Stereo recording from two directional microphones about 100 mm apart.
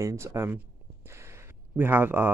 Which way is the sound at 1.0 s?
25° right (ahead or behind).